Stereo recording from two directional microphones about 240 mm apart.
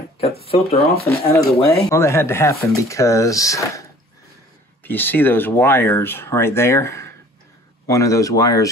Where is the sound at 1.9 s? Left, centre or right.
Centre.